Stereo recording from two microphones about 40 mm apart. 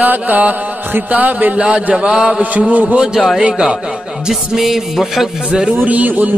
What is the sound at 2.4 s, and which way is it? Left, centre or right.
Speech, right.